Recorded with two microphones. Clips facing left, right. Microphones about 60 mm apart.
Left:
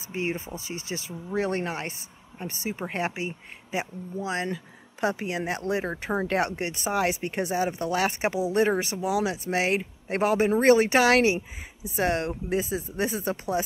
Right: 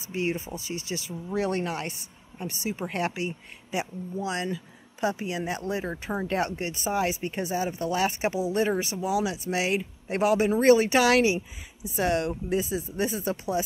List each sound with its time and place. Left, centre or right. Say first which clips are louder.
0.1 s speech: right 1 dB; left
5.0 s speech: left 1 dB; left